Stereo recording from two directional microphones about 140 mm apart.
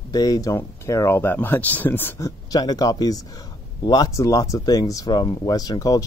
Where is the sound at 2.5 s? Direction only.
30° left (ahead or behind).